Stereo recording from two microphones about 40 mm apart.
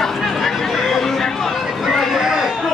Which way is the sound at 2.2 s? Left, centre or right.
Centre.